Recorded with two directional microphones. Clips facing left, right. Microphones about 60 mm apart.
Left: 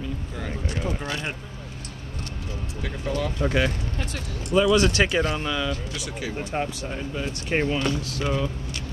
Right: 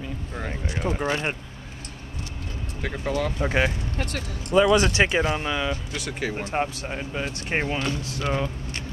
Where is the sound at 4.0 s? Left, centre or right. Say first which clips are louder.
Right 2 dB; right.